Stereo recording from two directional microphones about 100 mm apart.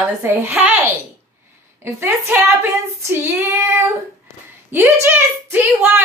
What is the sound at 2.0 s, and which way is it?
A woman's voice, 25° right (ahead or behind).